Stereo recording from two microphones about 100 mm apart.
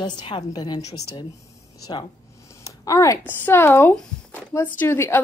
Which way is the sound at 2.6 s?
35° left (ahead or behind).